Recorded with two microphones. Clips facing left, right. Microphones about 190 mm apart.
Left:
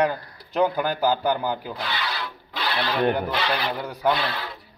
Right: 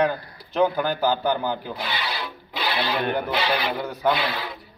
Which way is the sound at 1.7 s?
10° right (ahead or behind).